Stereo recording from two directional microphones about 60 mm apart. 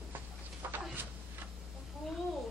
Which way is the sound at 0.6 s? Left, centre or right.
Right.